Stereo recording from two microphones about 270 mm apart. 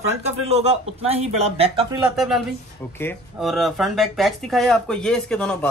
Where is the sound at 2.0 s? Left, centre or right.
Centre.